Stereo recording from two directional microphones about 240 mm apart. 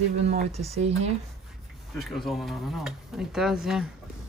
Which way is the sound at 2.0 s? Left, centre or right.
Centre.